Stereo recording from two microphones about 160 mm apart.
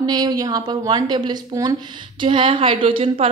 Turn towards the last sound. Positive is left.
turn(degrees=-30)  # may be behind; listen again after turning